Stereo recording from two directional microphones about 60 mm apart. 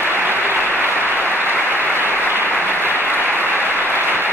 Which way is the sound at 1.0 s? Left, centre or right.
Right.